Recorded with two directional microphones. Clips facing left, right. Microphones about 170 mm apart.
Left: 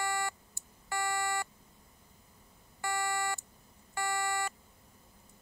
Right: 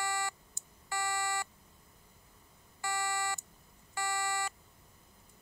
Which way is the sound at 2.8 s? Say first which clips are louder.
Left 2 dB; 55° left (ahead or behind).